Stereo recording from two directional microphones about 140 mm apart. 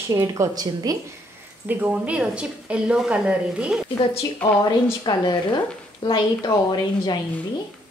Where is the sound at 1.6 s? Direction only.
10° right (ahead or behind).